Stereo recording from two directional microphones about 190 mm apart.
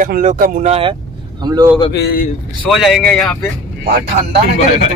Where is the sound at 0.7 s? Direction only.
30° right (ahead or behind).